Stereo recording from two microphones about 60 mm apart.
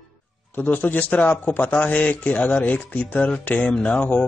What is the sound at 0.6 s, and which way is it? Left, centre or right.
Speech, left.